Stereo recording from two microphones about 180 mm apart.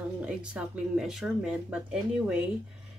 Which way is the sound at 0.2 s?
5° right (ahead or behind).